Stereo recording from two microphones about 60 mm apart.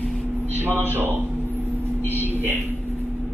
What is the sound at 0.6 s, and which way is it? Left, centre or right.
Speech, right.